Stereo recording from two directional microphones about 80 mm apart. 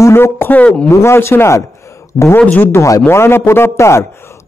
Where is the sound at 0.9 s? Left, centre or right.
Left.